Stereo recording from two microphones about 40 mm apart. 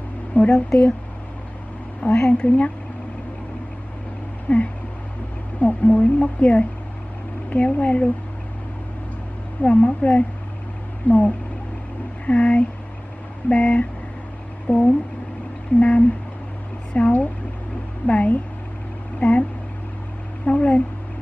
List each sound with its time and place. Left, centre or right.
0.3 s speech: left
2.1 s speech: centre
2.4 s speech: left
4.5 s a sound: left
5.6 s speech: left
9.6 s speech: left
11.1 s speech: left
14.7 s a sound: left
15.8 s speech: left
20.4 s speech: left